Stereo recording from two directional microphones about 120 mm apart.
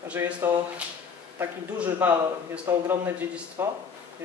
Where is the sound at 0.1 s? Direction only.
15° right (ahead or behind).